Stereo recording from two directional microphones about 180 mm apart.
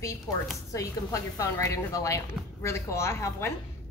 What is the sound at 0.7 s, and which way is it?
Speech, 20° left (ahead or behind).